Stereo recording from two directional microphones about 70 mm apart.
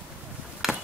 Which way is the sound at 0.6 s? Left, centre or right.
Centre.